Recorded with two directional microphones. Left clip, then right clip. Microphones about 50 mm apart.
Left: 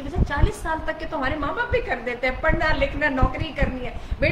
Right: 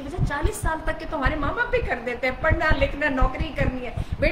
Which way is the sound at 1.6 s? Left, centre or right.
Right.